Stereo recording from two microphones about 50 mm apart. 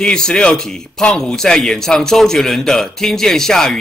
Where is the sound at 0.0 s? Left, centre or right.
Centre.